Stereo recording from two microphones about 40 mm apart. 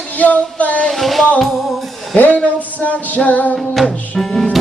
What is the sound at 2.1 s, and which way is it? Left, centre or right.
Music, left.